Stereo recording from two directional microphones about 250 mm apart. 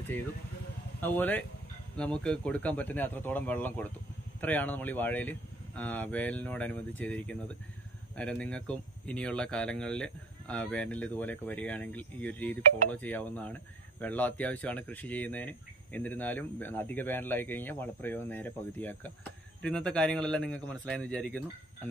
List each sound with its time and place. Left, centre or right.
1.0 s speech: centre